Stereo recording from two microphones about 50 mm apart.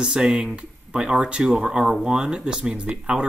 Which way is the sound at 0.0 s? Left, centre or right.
Centre.